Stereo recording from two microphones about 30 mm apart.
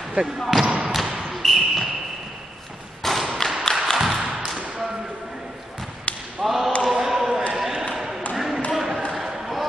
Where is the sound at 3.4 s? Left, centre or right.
Left.